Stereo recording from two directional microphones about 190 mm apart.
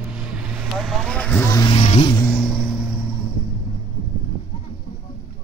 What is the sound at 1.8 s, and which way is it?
Vehicle, 35° left (ahead or behind).